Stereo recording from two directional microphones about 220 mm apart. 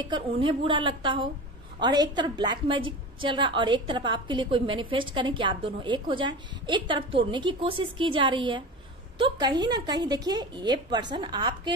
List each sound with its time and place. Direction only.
0.0 s a woman's voice: 20° right (ahead or behind)